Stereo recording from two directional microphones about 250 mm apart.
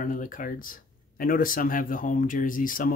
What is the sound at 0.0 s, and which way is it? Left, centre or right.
Speech, left.